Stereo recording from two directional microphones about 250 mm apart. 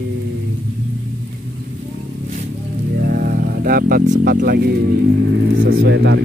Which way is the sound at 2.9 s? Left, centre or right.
Right.